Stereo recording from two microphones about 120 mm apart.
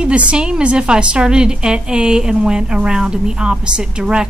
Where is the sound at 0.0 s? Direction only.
10° right (ahead or behind).